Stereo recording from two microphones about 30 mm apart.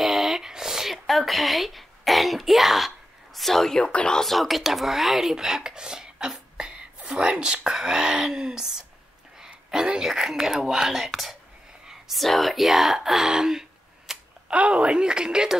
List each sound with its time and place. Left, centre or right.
0.0 s a sound: centre
0.4 s a sound: centre
0.9 s a woman's voice: centre
3.3 s speech: centre
3.8 s speech: left
4.2 s speech: centre
5.3 s speech: centre
7.7 s speech: right
9.7 s speech: centre
12.2 s speech: centre
13.3 s a sound: centre
14.5 s speech: right